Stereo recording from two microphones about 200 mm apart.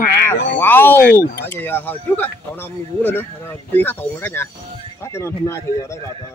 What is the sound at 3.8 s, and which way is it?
Speech, 10° left (ahead or behind).